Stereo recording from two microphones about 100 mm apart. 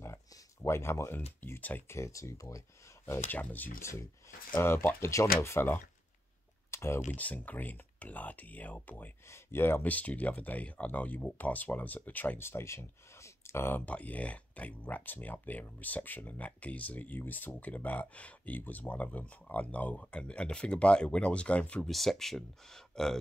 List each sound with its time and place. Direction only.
0.0 s a sound: 30° left (ahead or behind)
1.4 s speech: 20° left (ahead or behind); by 2.6 s 35° left (ahead or behind)
3.1 s speech: 20° left (ahead or behind)